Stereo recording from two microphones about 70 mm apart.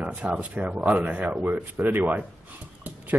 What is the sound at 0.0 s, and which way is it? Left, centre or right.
Speech, centre.